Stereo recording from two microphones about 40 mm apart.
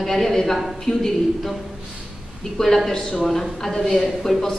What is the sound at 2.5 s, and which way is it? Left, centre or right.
A woman's voice, centre.